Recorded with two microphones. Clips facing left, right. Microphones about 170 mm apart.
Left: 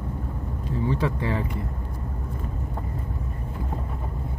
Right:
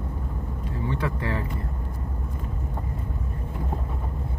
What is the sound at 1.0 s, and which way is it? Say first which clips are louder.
Speech: left 2 dB; 25° left (ahead or behind).